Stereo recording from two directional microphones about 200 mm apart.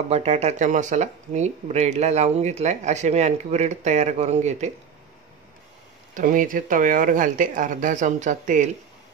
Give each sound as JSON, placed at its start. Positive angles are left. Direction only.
{"t": 0.1, "sound": "speech", "side_deg": -35}
{"t": 6.1, "sound": "speech", "side_deg": -40}